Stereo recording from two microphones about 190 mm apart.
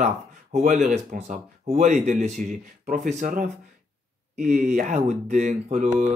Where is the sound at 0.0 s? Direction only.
40° right (ahead or behind).